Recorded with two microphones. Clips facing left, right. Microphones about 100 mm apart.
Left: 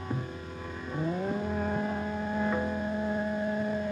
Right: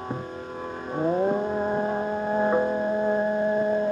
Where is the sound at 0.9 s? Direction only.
40° right (ahead or behind).